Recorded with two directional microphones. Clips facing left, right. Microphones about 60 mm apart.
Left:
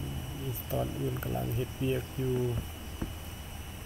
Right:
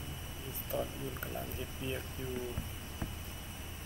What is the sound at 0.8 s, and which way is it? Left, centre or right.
Speech, centre.